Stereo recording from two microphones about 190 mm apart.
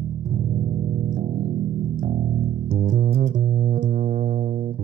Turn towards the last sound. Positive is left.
turn(degrees=-50)  # may be behind; listen again after turning